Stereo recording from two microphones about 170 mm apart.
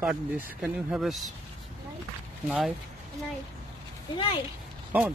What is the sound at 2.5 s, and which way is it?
Speech, 5° right (ahead or behind).